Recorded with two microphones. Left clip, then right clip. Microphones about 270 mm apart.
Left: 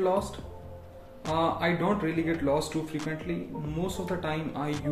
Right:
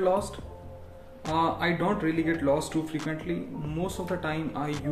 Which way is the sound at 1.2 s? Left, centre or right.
Centre.